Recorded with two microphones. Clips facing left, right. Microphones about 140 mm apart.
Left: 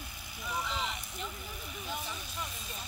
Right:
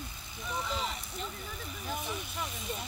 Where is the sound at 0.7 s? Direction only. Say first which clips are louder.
Right 1 dB; 35° right (ahead or behind).